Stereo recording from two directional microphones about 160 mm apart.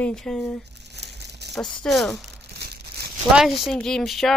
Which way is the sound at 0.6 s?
90° right.